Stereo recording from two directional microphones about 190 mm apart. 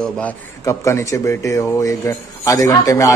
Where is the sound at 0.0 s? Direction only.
10° left (ahead or behind).